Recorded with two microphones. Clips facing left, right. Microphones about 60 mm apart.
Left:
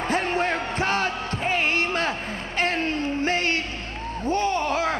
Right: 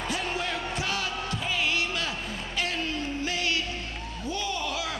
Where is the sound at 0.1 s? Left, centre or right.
Left.